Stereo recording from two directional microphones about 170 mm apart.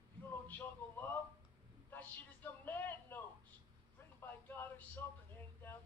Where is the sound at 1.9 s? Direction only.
10° left (ahead or behind).